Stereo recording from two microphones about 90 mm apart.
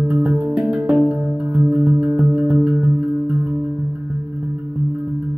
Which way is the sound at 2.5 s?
15° right (ahead or behind).